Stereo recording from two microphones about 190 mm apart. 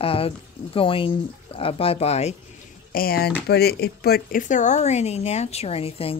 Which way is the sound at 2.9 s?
50° left (ahead or behind).